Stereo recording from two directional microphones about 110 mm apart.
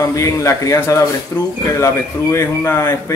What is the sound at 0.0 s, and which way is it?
A man's voice, 30° left (ahead or behind).